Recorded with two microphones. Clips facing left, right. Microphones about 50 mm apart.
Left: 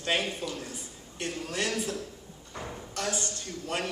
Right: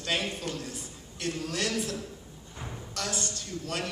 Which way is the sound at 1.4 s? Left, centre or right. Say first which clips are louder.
Left 1 dB; centre.